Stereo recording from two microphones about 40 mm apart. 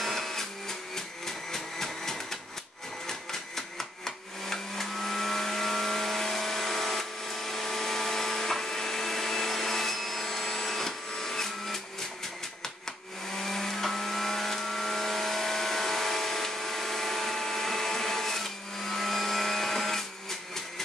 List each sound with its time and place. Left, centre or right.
0.0 s printer: centre
3.1 s a sound: centre
13.4 s vehicle: centre